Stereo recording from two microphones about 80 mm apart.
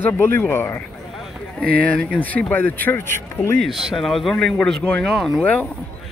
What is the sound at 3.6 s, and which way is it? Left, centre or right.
A man's voice, centre.